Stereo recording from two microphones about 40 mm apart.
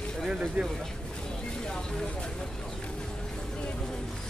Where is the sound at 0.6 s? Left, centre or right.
Right.